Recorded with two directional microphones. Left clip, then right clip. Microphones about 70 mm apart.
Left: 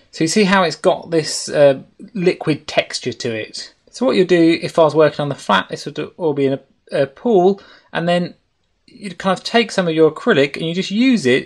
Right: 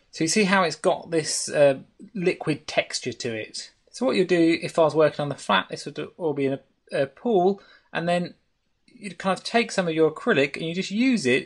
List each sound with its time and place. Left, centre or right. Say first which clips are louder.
0.4 s speech: left 7 dB; left
6.0 s speech: left 8 dB; centre
6.3 s speech: left 8 dB; left
9.0 s speech: left 7 dB; left